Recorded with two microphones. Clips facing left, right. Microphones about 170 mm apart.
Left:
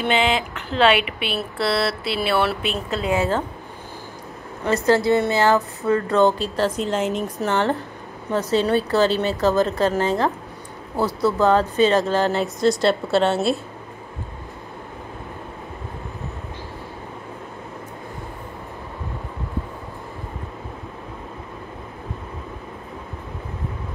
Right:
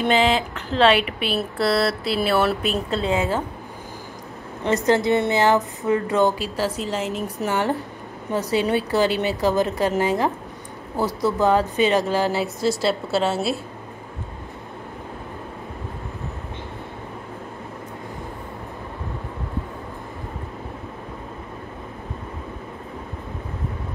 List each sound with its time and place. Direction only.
0.0 s speech: 35° right (ahead or behind)
1.6 s a sound: 40° right (ahead or behind)
2.2 s speech: 40° right (ahead or behind)
2.9 s a woman's voice: 30° right (ahead or behind)
4.6 s a woman's voice: 20° right (ahead or behind); by 13.6 s 5° right (ahead or behind)